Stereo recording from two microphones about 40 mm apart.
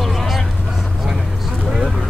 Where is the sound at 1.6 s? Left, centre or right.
Centre.